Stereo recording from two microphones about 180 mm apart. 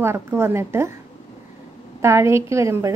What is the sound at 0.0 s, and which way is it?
Speech, 15° right (ahead or behind).